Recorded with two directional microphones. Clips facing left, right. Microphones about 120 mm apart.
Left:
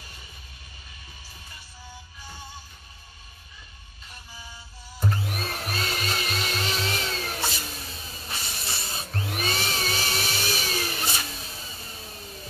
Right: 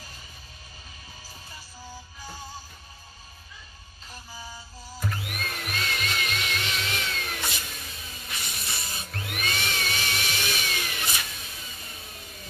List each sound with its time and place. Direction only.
5.0 s music: 30° left (ahead or behind)